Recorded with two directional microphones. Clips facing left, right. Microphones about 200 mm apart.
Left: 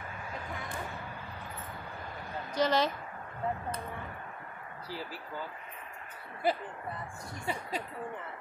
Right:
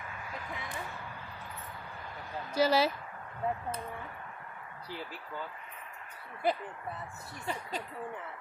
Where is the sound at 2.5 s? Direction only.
10° right (ahead or behind).